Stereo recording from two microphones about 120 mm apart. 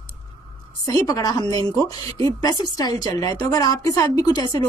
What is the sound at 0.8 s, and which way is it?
A woman's voice, 30° left (ahead or behind).